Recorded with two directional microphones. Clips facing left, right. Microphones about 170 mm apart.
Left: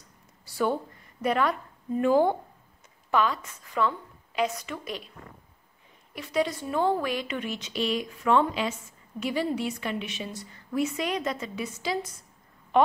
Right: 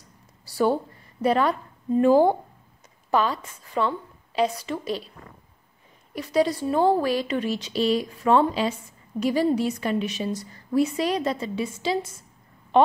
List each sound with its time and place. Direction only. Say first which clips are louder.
0.5 s a sound: right 5 dB; 35° right (ahead or behind)
1.2 s a woman's voice: right 4 dB; 30° right (ahead or behind)
6.1 s a woman's voice: right 5 dB; 35° right (ahead or behind)